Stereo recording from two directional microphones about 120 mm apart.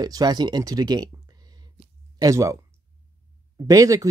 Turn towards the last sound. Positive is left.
turn(degrees=-30)  # may be behind; listen again after turning